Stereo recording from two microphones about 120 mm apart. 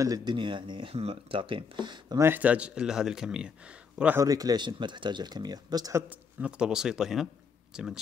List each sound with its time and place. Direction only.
0.0 s speech: 35° right (ahead or behind)
2.1 s speech: 20° right (ahead or behind)
4.2 s speech: 30° right (ahead or behind)
6.0 s a man's voice: 10° right (ahead or behind)